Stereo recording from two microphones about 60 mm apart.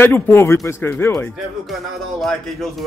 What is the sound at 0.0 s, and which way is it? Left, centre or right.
Speech, left.